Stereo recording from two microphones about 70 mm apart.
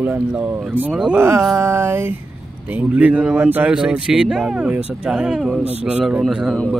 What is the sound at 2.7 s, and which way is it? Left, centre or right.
Speech, right.